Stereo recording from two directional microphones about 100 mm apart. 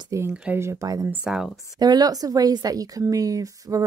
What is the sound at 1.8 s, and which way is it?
A woman's voice, 40° right (ahead or behind).